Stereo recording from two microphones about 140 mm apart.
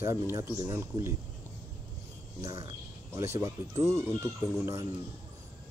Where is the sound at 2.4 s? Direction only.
25° right (ahead or behind).